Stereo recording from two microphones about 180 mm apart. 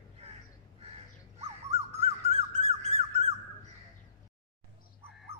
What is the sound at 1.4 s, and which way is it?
Music, 35° right (ahead or behind).